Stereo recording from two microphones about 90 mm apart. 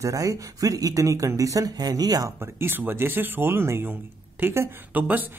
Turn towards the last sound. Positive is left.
turn(degrees=-20)  # may be behind; listen again after turning